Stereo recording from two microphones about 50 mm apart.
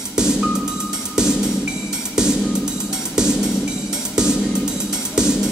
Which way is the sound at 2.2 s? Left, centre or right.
Centre.